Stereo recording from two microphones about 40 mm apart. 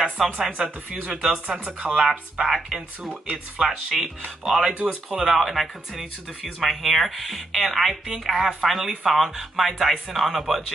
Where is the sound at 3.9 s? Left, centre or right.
Centre.